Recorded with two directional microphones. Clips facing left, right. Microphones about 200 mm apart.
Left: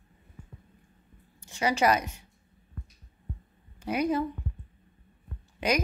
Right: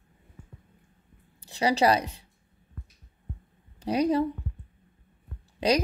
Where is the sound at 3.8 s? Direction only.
35° right (ahead or behind).